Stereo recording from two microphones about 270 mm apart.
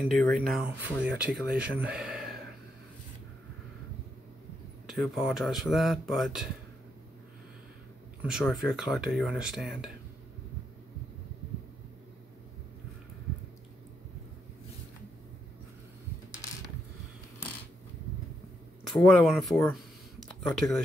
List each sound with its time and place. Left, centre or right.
0.0 s speech: centre
4.8 s speech: centre
8.2 s speech: centre
18.9 s speech: centre
20.2 s a sound: centre